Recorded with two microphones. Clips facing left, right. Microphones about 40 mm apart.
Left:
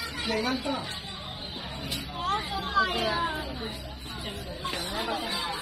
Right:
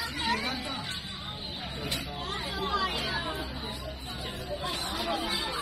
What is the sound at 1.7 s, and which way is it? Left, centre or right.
Vehicle, right.